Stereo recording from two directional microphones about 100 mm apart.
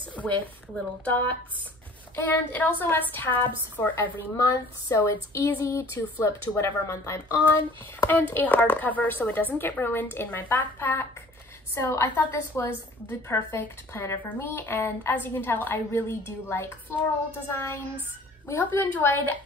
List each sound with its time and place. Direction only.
0.1 s a woman's voice: 15° left (ahead or behind)
4.4 s a sound: 30° left (ahead or behind)
5.9 s speech: 15° left (ahead or behind)